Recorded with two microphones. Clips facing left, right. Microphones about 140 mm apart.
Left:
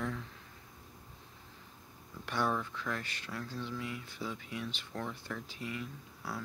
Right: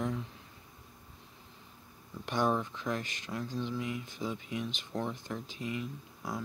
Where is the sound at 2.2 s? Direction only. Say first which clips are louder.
Right 3 dB; 20° right (ahead or behind).